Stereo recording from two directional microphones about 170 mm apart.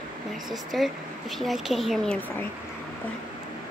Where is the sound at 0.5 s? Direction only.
Centre (ahead or behind).